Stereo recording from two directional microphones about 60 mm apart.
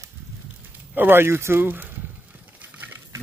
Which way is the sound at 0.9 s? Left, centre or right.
Right.